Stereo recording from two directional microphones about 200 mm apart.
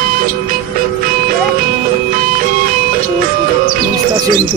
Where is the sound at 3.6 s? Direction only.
45° right (ahead or behind).